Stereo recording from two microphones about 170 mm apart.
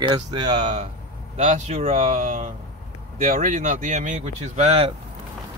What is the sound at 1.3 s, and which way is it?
Speech, 40° right (ahead or behind).